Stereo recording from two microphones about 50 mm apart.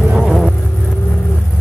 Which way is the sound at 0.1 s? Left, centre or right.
Centre.